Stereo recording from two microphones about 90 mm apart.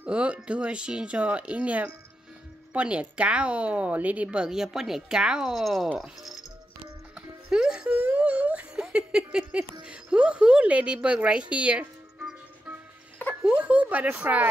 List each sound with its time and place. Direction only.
0.0 s a woman's voice: 15° right (ahead or behind)
7.2 s music: 10° right (ahead or behind)
9.8 s a woman's voice: 10° right (ahead or behind)